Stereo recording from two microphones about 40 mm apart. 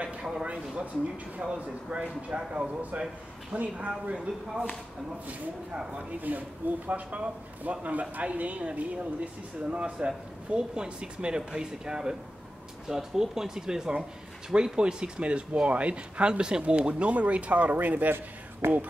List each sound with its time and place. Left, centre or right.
0.2 s speech: centre
1.4 s speech: right
6.3 s speech: right
18.6 s speech: right